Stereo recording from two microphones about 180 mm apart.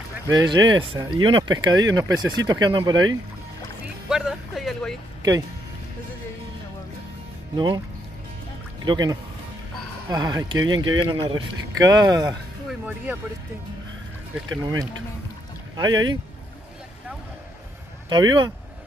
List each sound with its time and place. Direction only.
0.3 s speech: 25° right (ahead or behind)
4.1 s music: 5° right (ahead or behind)
7.5 s speech: 25° right (ahead or behind)
8.8 s speech: 25° right (ahead or behind)
10.6 s speech: 90° right
11.0 s speech: 25° right (ahead or behind)
12.6 s speech: 10° right (ahead or behind)
15.7 s speech: 25° right (ahead or behind)
18.1 s speech: 25° right (ahead or behind)